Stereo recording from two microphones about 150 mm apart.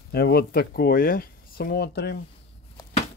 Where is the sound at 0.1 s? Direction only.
90° left.